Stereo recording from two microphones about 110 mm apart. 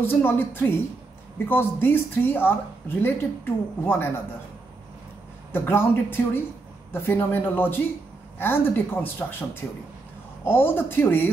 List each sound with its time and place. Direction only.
0.0 s a woman's voice: 20° left (ahead or behind)
5.5 s speech: 20° left (ahead or behind)